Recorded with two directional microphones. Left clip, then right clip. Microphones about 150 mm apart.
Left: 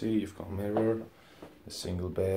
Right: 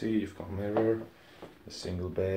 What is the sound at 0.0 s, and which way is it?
Speech, 20° left (ahead or behind).